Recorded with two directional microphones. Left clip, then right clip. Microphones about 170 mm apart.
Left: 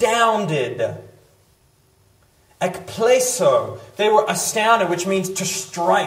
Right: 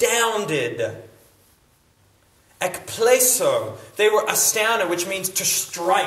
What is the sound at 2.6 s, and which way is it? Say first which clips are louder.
A man's voice: left 1 dB; 15° right (ahead or behind).